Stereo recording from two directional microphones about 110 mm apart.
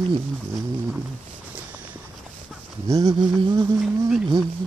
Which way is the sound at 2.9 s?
35° right (ahead or behind).